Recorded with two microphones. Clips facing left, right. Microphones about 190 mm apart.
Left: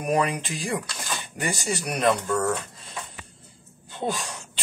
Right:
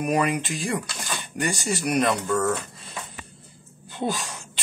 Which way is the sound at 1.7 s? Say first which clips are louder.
Even; centre (ahead or behind).